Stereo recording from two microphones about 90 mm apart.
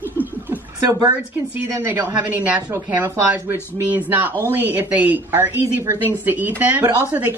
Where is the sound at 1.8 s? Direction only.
25° right (ahead or behind).